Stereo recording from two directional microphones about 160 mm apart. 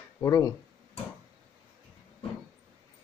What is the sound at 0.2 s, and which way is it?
Speech, 20° left (ahead or behind).